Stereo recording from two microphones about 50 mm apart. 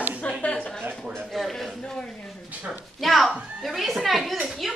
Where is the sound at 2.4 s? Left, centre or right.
Right.